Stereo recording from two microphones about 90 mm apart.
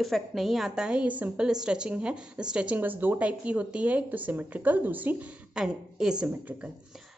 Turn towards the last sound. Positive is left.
turn(degrees=-10)  # may be behind; listen again after turning